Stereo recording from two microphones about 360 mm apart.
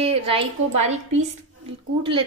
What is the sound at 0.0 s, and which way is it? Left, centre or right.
Speech, centre.